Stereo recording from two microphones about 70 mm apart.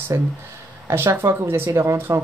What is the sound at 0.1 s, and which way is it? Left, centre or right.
Speech, right.